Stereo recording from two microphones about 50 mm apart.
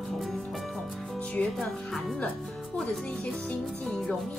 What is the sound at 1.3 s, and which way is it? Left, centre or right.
Speech, left.